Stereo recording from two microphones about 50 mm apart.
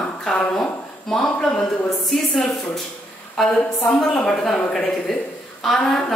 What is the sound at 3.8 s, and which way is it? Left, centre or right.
A woman's voice, centre.